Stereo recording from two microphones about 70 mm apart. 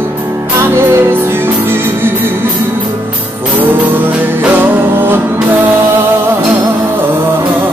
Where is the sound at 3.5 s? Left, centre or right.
Right.